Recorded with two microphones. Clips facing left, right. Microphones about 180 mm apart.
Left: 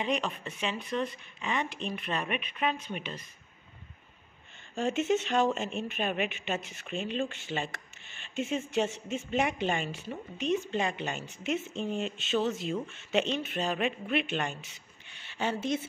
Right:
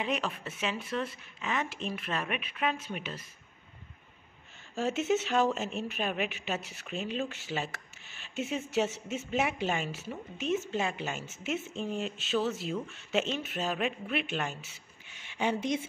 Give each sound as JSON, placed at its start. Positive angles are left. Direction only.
{"t": 0.0, "sound": "speech", "side_deg": -5}
{"t": 4.7, "sound": "speech", "side_deg": 0}